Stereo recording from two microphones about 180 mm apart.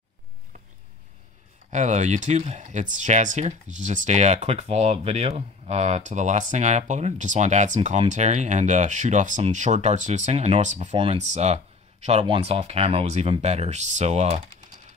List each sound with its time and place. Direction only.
1.7 s speech: 40° right (ahead or behind)